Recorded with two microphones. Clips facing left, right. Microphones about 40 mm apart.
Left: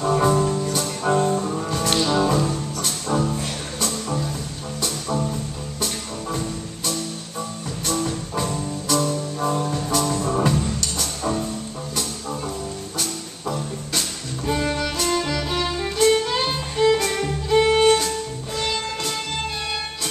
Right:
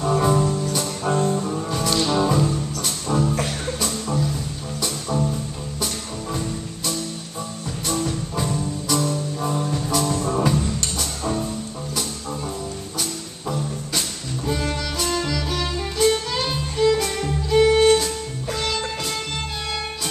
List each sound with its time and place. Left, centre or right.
0.0 s music: centre
8.0 s music: centre
13.5 s music: centre
14.4 s music: centre